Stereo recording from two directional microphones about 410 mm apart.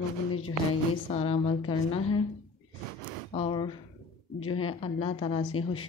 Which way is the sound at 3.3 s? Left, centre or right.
Centre.